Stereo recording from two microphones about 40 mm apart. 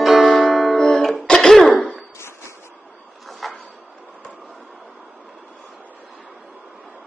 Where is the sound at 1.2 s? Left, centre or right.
Centre.